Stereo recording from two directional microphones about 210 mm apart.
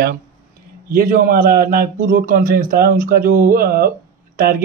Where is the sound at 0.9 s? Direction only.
45° right (ahead or behind).